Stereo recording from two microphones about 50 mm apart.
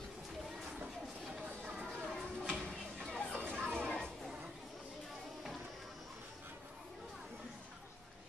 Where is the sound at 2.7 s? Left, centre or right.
Centre.